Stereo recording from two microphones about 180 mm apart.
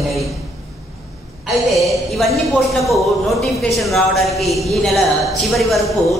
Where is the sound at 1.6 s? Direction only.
Centre (ahead or behind).